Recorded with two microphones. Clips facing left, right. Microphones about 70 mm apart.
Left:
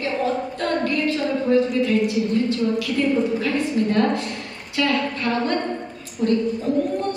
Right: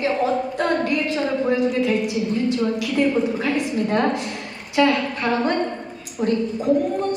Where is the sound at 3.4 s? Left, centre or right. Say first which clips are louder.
Even; right.